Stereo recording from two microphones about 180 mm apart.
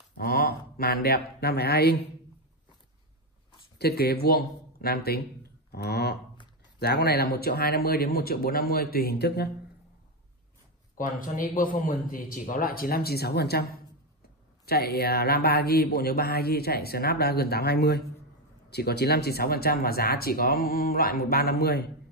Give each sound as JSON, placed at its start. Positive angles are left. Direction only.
{"t": 0.2, "sound": "speech", "side_deg": 55}
{"t": 3.7, "sound": "a man's voice", "side_deg": 60}
{"t": 11.0, "sound": "a man's voice", "side_deg": 50}
{"t": 14.7, "sound": "a man's voice", "side_deg": 60}